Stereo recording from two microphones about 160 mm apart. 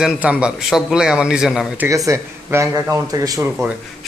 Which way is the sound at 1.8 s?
20° right (ahead or behind).